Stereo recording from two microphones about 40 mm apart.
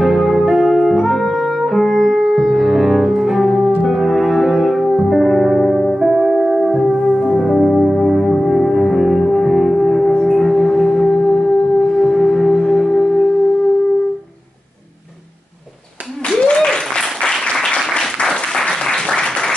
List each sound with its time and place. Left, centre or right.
0.0 s music: centre
7.2 s music: centre
9.8 s singing bowl: centre
11.9 s music: centre
16.3 s applause: centre
17.5 s applause: left